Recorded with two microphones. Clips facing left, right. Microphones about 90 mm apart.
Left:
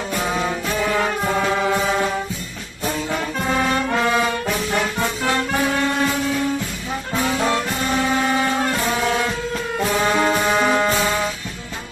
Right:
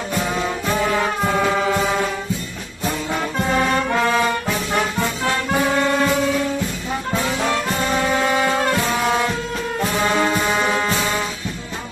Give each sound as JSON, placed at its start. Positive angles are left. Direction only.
{"t": 4.0, "sound": "brass instrument", "side_deg": 0}
{"t": 10.1, "sound": "music", "side_deg": 15}